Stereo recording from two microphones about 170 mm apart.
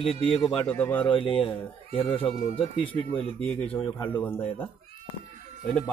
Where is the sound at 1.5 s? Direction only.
30° left (ahead or behind).